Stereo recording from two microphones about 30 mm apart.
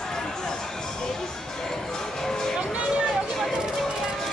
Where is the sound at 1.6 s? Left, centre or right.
Centre.